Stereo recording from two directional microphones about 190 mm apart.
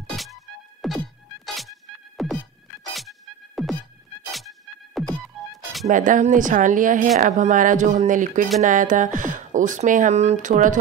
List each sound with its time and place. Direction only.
0.1 s music: centre (ahead or behind)
5.9 s speech: 45° right (ahead or behind)